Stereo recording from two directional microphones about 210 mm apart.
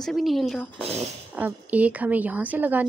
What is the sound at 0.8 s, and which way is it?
Speech, 30° right (ahead or behind).